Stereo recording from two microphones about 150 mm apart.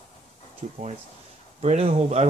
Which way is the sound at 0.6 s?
50° right (ahead or behind).